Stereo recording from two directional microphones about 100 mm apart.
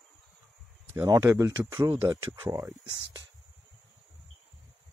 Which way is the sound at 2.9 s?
40° right (ahead or behind).